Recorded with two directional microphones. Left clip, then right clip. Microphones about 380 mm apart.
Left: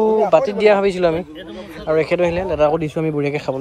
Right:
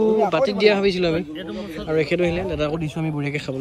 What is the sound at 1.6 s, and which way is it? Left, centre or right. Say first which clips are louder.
A man's voice: left 5 dB; centre.